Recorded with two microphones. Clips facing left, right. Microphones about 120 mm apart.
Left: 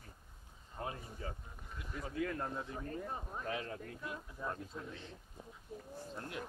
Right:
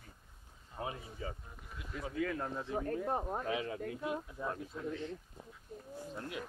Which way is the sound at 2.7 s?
65° right (ahead or behind).